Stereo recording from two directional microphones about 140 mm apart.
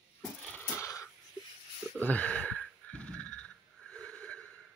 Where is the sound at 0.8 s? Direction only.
20° left (ahead or behind).